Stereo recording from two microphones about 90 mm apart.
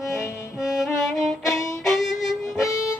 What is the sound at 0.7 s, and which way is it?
Music, centre (ahead or behind).